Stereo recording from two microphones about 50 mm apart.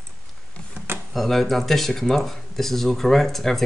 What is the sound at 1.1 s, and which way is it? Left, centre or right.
Speech, centre.